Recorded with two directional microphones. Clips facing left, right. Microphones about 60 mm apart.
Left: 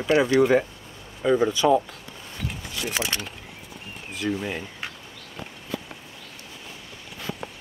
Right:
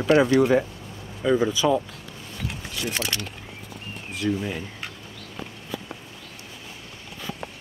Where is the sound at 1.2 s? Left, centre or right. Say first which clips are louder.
Even; centre.